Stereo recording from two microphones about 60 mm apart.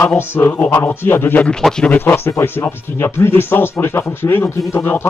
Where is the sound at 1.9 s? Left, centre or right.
Left.